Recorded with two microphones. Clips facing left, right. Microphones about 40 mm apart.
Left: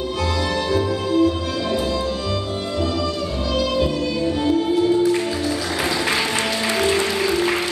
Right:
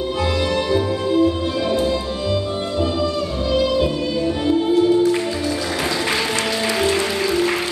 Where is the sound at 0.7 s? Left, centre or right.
Right.